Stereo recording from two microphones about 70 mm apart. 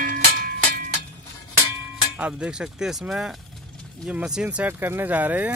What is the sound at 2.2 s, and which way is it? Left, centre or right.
Speech, centre.